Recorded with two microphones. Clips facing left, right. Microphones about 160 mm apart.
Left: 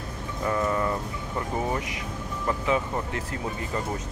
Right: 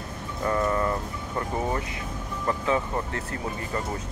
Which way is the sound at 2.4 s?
15° left (ahead or behind).